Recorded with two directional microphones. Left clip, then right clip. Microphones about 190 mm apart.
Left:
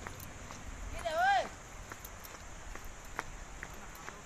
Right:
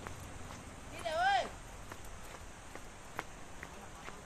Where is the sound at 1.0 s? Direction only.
30° left (ahead or behind).